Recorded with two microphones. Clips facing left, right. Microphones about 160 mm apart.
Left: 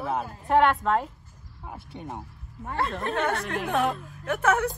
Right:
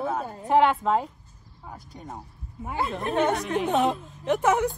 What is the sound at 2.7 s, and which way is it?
A woman's voice, 5° right (ahead or behind).